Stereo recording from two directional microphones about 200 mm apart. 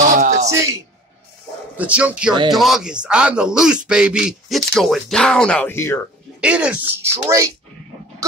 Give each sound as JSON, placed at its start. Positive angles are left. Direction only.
{"t": 0.2, "sound": "a sound", "side_deg": -35}
{"t": 1.8, "sound": "a man's voice", "side_deg": -5}
{"t": 6.4, "sound": "speech", "side_deg": -5}